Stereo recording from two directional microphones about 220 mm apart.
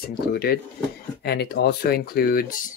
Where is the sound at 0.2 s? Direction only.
45° left (ahead or behind).